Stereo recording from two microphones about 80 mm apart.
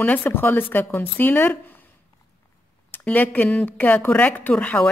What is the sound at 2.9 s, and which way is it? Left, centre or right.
Speech, left.